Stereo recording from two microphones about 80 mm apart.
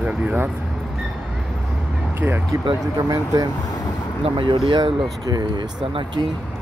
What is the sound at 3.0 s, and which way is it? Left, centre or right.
Speech, right.